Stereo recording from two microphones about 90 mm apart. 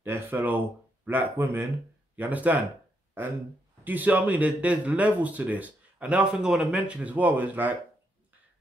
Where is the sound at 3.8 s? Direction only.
20° right (ahead or behind).